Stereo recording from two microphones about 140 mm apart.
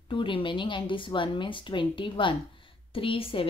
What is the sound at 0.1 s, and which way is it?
A woman's voice, 35° left (ahead or behind).